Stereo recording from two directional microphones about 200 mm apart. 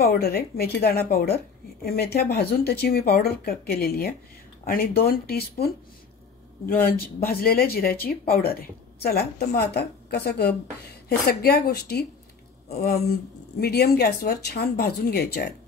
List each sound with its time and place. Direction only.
0.0 s a woman's voice: 50° left (ahead or behind)
6.7 s a woman's voice: 50° left (ahead or behind)